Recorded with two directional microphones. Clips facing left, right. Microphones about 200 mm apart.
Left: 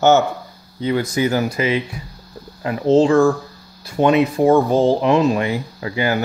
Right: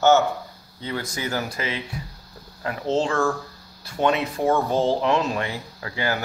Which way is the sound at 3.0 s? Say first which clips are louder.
Left 9 dB; 15° left (ahead or behind).